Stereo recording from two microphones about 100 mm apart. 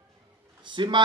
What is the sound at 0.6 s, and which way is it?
Speech, 55° right (ahead or behind).